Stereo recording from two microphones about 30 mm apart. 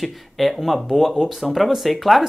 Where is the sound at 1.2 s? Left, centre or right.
Right.